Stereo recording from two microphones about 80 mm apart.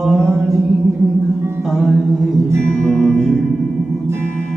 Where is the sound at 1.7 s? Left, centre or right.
Centre.